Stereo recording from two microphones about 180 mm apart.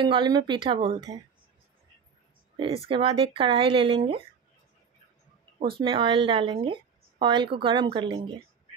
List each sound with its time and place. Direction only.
0.0 s a woman's voice: 25° right (ahead or behind)
2.5 s a woman's voice: 25° right (ahead or behind)
5.8 s a woman's voice: 30° right (ahead or behind)